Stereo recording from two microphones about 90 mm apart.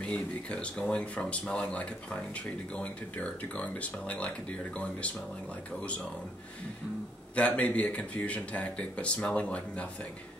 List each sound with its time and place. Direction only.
0.0 s speech: 15° left (ahead or behind)
7.3 s speech: 15° left (ahead or behind)